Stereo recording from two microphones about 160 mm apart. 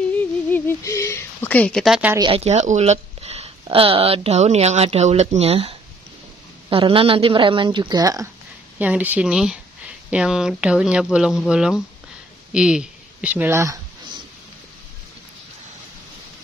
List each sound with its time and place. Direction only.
0.2 s a sound: 15° left (ahead or behind); by 2.1 s 5° right (ahead or behind)
2.1 s a woman's voice: 35° right (ahead or behind)
8.7 s speech: 10° right (ahead or behind)